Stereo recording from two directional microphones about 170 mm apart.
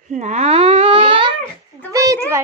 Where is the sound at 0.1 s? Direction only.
40° right (ahead or behind).